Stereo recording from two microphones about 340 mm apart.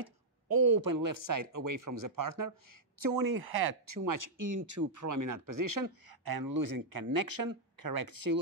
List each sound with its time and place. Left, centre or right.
0.0 s speech: right